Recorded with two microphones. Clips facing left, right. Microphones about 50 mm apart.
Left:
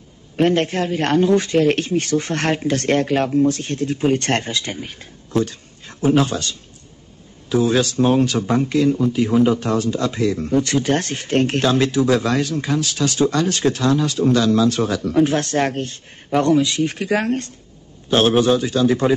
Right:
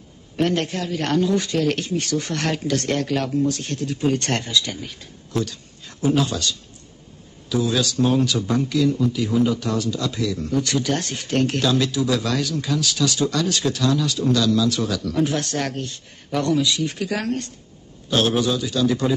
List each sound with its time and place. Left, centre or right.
0.4 s a man's voice: left